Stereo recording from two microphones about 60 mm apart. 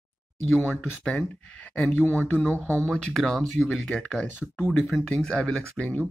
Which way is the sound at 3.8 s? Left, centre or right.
Centre.